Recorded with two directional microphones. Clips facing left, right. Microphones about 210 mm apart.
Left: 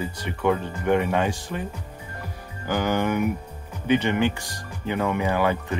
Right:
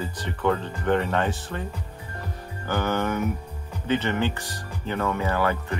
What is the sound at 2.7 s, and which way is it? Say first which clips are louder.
Speech: left 2 dB; 15° left (ahead or behind).